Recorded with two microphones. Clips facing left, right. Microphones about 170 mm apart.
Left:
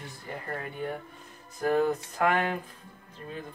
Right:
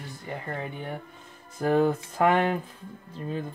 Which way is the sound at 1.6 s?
30° right (ahead or behind).